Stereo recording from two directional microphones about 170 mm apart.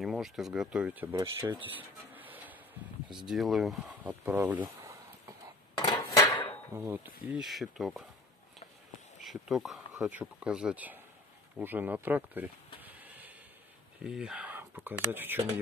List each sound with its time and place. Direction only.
0.0 s speech: centre (ahead or behind)
1.7 s printer: 10° right (ahead or behind)
3.3 s speech: centre (ahead or behind)
5.8 s dishes: 25° left (ahead or behind)
6.7 s speech: 15° right (ahead or behind)
7.2 s speech: 5° right (ahead or behind)
9.2 s speech: centre (ahead or behind)